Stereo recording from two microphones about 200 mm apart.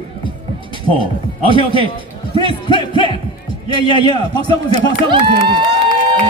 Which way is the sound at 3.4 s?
25° right (ahead or behind).